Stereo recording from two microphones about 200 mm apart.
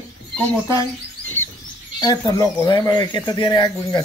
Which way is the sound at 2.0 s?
20° left (ahead or behind).